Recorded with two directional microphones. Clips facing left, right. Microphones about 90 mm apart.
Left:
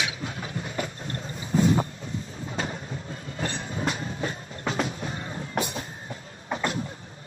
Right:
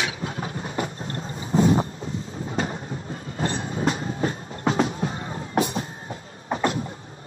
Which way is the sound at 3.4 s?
30° right (ahead or behind).